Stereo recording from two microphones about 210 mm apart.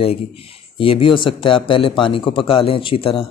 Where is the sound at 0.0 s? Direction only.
25° left (ahead or behind).